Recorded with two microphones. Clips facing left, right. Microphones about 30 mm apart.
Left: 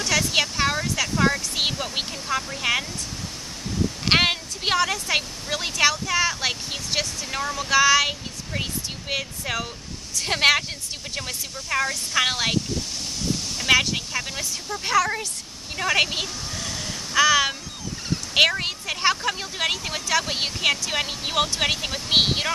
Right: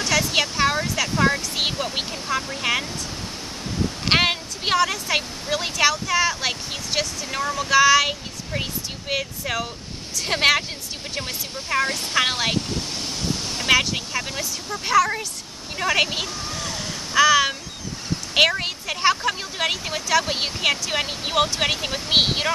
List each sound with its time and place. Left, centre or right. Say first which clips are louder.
0.0 s speech: right 1 dB; centre
4.0 s speech: even; centre
11.1 s speech: right 2 dB; centre
12.2 s speech: right 1 dB; centre
13.7 s speech: even; centre
15.7 s a sound: right 1 dB; centre
18.3 s speech: right 1 dB; centre